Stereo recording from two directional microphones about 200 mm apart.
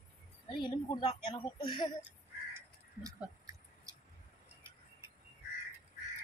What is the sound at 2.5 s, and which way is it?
Crow, 15° right (ahead or behind).